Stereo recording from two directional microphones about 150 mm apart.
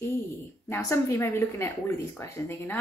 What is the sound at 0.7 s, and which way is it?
A woman's voice, 15° left (ahead or behind).